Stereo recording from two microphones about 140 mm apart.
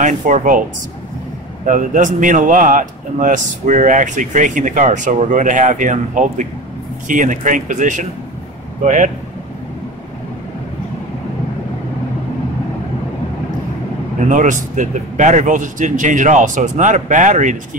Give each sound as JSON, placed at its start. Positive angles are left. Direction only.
{"t": 0.0, "sound": "a man's voice", "side_deg": -65}
{"t": 1.7, "sound": "a man's voice", "side_deg": -65}
{"t": 14.3, "sound": "a man's voice", "side_deg": -60}